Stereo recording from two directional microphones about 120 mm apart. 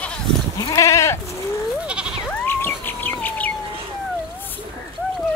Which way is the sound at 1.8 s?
10° right (ahead or behind).